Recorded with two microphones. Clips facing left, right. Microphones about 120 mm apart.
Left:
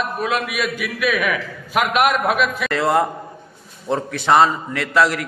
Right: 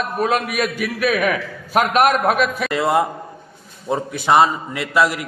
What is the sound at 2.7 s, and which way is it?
A man's voice, 5° right (ahead or behind).